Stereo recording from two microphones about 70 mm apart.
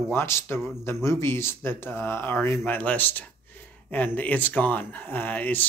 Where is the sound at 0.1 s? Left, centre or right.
Left.